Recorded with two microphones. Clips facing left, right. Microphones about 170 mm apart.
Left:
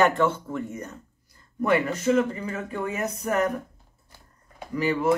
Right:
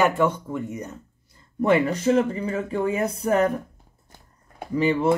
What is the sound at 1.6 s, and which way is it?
Speech, 30° right (ahead or behind).